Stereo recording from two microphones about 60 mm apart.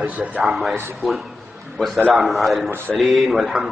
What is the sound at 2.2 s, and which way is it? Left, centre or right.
Speech, centre.